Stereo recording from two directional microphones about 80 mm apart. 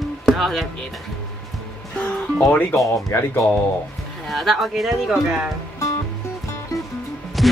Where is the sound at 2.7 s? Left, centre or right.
Left.